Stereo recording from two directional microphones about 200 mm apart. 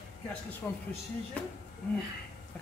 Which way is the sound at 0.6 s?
5° left (ahead or behind).